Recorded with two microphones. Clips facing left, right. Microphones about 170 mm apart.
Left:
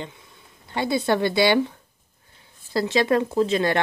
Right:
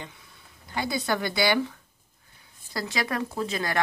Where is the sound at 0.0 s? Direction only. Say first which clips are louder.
Left 6 dB; 25° left (ahead or behind).